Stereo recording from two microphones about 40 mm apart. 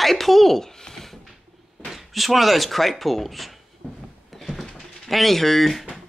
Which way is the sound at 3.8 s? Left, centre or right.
Left.